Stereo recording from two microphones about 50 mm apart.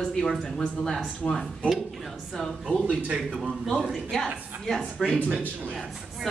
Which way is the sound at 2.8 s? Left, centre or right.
Right.